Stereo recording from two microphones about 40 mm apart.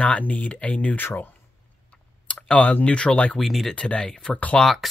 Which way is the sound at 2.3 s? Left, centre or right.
Left.